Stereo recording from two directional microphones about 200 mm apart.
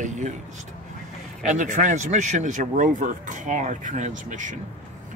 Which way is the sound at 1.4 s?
40° right (ahead or behind).